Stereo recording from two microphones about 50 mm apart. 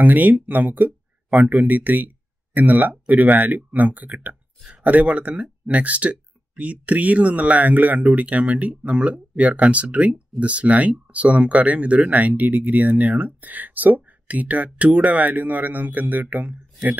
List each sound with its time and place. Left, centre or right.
0.0 s speech: right